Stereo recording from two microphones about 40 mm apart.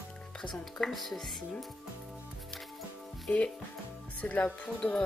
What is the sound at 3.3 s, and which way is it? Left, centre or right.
Speech, left.